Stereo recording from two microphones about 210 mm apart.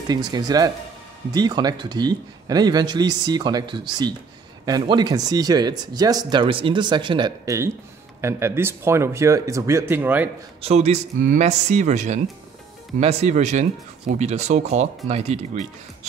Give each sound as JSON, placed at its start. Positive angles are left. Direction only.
{"t": 0.1, "sound": "speech", "side_deg": -20}
{"t": 10.6, "sound": "speech", "side_deg": -30}